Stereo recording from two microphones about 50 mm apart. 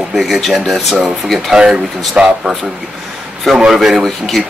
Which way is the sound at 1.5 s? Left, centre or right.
Centre.